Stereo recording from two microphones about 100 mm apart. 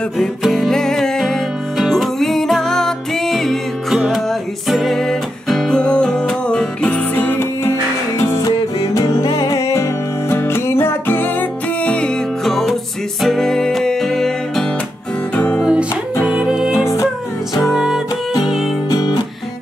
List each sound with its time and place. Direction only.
0.2 s music: centre (ahead or behind)
15.3 s music: 15° left (ahead or behind)
15.6 s music: 10° right (ahead or behind)
18.9 s music: 45° left (ahead or behind)